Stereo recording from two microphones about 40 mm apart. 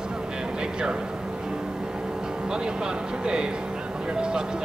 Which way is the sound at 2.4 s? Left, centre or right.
Centre.